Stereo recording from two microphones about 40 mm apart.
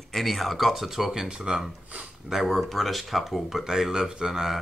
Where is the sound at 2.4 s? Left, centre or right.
Centre.